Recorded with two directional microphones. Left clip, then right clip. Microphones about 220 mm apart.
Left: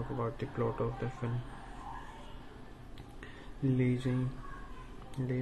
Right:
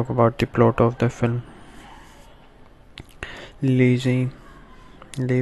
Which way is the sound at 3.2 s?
45° right (ahead or behind).